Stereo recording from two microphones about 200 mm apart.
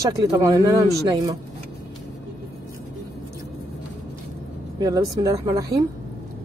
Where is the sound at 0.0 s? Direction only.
15° right (ahead or behind).